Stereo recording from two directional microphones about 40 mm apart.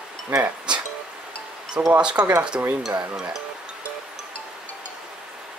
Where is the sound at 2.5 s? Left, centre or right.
Right.